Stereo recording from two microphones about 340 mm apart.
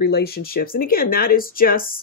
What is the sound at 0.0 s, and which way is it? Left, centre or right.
Speech, left.